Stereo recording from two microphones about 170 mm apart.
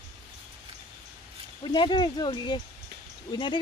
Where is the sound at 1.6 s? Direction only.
30° left (ahead or behind).